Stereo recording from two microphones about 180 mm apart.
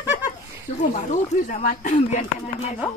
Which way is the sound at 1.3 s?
45° left (ahead or behind).